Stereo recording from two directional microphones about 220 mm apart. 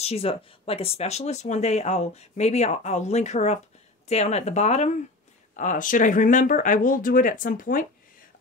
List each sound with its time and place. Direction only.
0.0 s speech: 25° left (ahead or behind)